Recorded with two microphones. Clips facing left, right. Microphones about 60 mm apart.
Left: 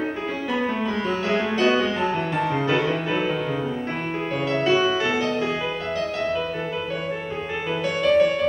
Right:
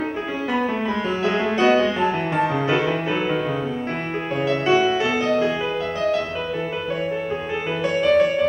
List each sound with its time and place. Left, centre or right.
1.2 s music: right
2.5 s music: centre
4.5 s music: centre
7.8 s music: centre